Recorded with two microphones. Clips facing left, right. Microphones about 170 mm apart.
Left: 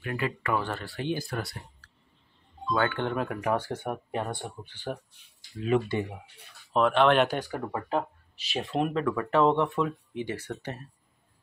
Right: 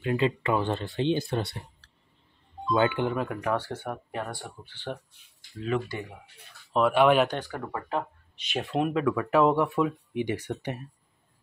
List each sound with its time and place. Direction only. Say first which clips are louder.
0.0 s speech: right 5 dB; 20° right (ahead or behind)
2.7 s speech: right 3 dB; 15° right (ahead or behind)
3.1 s speech: even; centre (ahead or behind)
3.7 s speech: left 2 dB; 15° left (ahead or behind)
6.7 s speech: right 1 dB; 5° right (ahead or behind)
7.6 s speech: left 2 dB; 25° left (ahead or behind)
8.5 s speech: right 1 dB; centre (ahead or behind)